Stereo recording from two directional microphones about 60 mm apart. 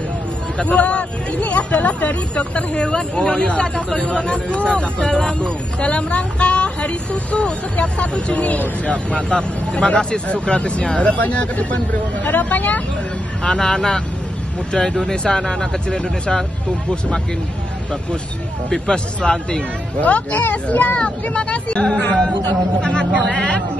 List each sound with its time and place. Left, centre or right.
0.6 s speech: left
13.4 s speech: centre
18.7 s speech: centre
20.0 s speech: left